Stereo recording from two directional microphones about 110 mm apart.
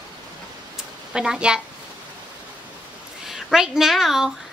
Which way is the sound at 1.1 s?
5° right (ahead or behind).